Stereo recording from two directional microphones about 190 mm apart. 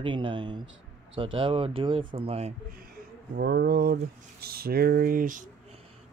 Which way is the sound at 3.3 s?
55° right (ahead or behind).